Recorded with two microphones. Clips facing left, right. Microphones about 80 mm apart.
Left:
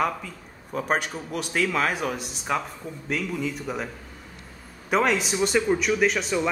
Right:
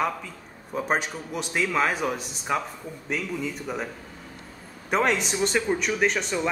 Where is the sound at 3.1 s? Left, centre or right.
Centre.